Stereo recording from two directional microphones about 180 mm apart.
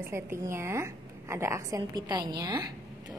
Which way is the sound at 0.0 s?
15° right (ahead or behind).